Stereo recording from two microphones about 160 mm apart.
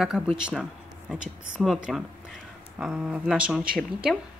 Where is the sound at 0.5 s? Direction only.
5° right (ahead or behind).